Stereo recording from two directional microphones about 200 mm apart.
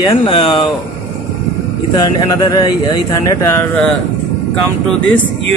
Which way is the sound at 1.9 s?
20° left (ahead or behind).